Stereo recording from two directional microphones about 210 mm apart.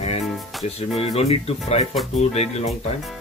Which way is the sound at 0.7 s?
30° left (ahead or behind).